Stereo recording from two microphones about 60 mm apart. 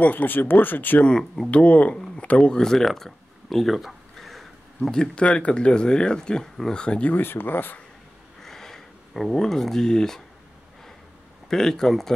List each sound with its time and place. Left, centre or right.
0.0 s speech: left
1.0 s speech: centre
1.5 s speech: left
2.0 s a sound: centre
4.9 s speech: centre
7.2 s speech: left
8.4 s a sound: centre
11.4 s speech: centre